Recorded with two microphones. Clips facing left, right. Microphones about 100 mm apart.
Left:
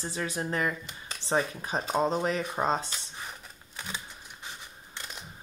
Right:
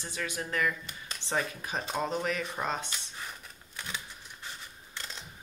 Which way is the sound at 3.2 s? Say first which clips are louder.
Left 1 dB; 20° left (ahead or behind).